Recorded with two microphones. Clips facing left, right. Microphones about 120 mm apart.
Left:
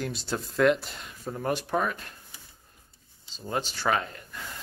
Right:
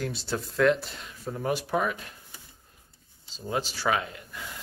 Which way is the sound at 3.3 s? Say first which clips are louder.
Right 1 dB; 5° right (ahead or behind).